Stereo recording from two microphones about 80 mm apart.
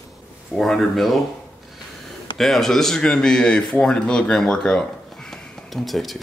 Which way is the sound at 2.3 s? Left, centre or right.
Centre.